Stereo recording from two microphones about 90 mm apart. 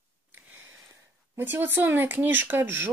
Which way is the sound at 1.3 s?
25° right (ahead or behind).